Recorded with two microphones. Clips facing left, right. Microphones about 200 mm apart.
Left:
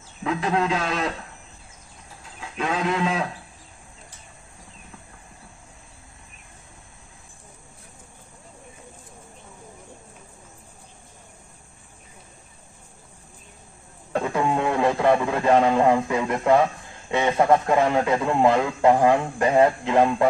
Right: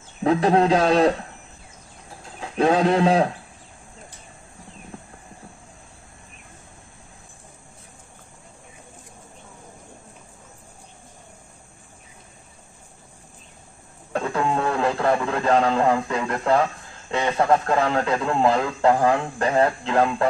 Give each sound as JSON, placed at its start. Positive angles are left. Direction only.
{"t": 0.2, "sound": "speech", "side_deg": -35}
{"t": 2.5, "sound": "speech", "side_deg": -35}
{"t": 14.3, "sound": "radio", "side_deg": 15}
{"t": 15.3, "sound": "a man's voice", "side_deg": 10}